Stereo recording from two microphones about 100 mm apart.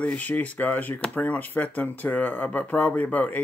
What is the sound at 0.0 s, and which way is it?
Speech, 15° left (ahead or behind).